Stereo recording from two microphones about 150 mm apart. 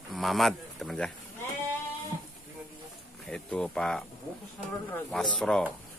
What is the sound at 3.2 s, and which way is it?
Speech, 5° left (ahead or behind).